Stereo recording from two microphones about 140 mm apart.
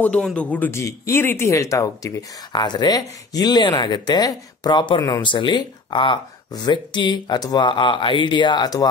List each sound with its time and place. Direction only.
0.0 s speech: 10° left (ahead or behind); by 8.8 s 30° left (ahead or behind)